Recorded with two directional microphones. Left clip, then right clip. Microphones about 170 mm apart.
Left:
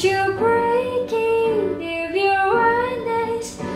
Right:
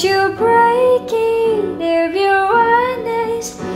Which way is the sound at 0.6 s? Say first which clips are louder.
Right 7 dB; 50° right (ahead or behind).